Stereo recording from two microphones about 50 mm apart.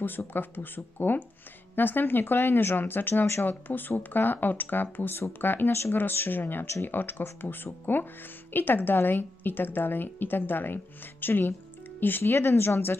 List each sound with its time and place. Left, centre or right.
0.0 s a woman's voice: left
6.6 s a woman's voice: left